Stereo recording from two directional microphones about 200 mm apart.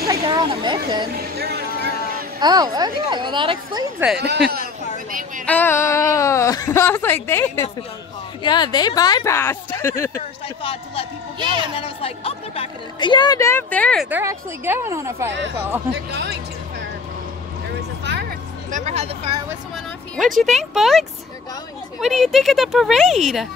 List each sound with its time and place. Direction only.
0.0 s chatter: 20° right (ahead or behind)
1.1 s a sound: 50° right (ahead or behind)
2.4 s speech: 20° right (ahead or behind)
4.2 s speech: 55° right (ahead or behind)
5.5 s speech: 10° left (ahead or behind)
10.6 s speech: 25° left (ahead or behind)
11.3 s speech: 25° right (ahead or behind)
11.7 s speech: 25° left (ahead or behind); by 14.0 s 5° left (ahead or behind)
14.1 s speech: 10° right (ahead or behind)
15.9 s speech: 55° right (ahead or behind)
18.7 s vehicle: 35° right (ahead or behind)
20.4 s speech: centre (ahead or behind)
22.0 s speech: centre (ahead or behind)